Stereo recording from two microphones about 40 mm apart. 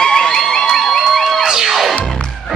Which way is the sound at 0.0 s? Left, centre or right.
Centre.